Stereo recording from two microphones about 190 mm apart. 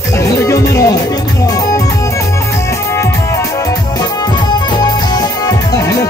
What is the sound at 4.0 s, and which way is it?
Music, 20° left (ahead or behind).